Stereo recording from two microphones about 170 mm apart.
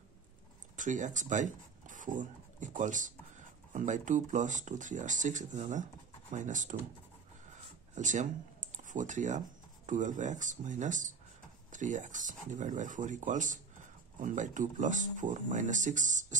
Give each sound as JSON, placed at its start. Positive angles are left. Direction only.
{"t": 0.7, "sound": "speech", "side_deg": -45}
{"t": 7.9, "sound": "speech", "side_deg": -45}